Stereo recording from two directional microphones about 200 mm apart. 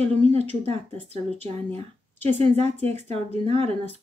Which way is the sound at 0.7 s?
30° right (ahead or behind).